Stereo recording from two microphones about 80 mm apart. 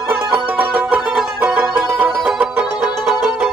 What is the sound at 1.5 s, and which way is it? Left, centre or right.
Music, centre.